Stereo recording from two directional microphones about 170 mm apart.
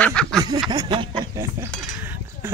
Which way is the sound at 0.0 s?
5° left (ahead or behind).